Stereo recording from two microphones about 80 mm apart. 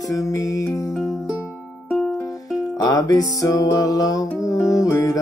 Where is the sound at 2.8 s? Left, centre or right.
Left.